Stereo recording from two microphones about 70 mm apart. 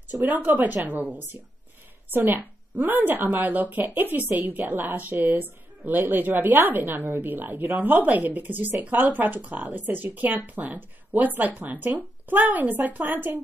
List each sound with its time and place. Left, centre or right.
0.1 s speech: right